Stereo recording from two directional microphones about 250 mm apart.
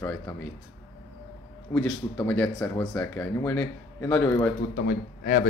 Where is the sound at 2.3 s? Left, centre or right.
Centre.